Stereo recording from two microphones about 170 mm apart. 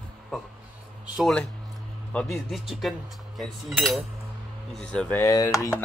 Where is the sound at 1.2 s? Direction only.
Centre (ahead or behind).